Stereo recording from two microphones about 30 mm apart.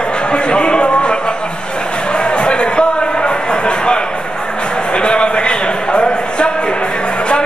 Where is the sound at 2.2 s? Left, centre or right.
Left.